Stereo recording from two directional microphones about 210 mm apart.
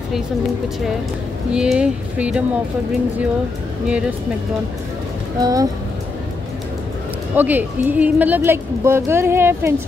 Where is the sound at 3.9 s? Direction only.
5° right (ahead or behind).